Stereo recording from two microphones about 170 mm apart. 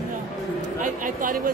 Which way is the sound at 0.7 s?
50° right (ahead or behind).